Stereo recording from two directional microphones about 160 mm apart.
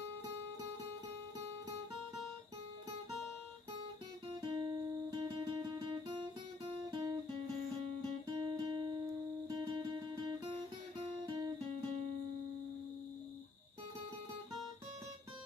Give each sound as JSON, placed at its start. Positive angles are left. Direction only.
{"t": 4.4, "sound": "music", "side_deg": -30}
{"t": 6.9, "sound": "guitar", "side_deg": -25}
{"t": 8.4, "sound": "music", "side_deg": -30}